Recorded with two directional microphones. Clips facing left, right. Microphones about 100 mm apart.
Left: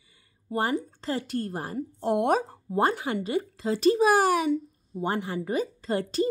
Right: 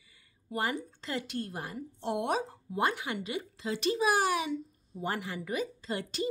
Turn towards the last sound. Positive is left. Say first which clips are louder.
# left 8 dB
turn(degrees=40)  # may be behind; listen again after turning